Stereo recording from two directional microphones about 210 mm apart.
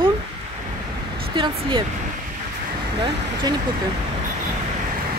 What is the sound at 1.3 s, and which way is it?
Speech, 20° right (ahead or behind).